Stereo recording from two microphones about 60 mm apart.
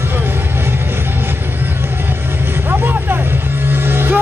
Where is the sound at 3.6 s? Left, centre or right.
Right.